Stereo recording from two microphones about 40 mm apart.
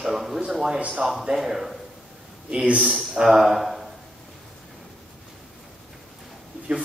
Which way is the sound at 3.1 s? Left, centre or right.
Centre.